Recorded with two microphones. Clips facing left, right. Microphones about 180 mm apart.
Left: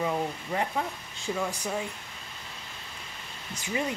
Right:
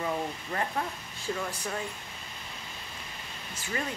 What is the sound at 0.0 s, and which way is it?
Speech, 15° left (ahead or behind).